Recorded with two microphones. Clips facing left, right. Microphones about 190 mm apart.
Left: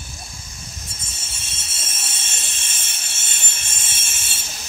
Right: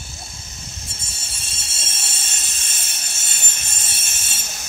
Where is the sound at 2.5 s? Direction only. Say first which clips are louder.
Even; 40° right (ahead or behind).